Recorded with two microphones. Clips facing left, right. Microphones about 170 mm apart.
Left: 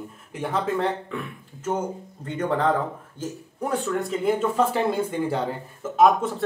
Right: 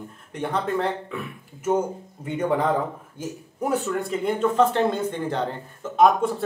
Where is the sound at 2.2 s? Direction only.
10° right (ahead or behind).